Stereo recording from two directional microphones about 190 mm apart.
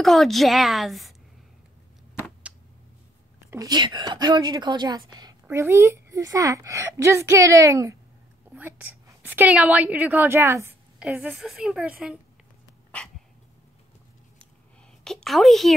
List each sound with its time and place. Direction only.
0.0 s a woman's voice: centre (ahead or behind)
3.4 s a woman's voice: 20° right (ahead or behind)
15.0 s a woman's voice: centre (ahead or behind)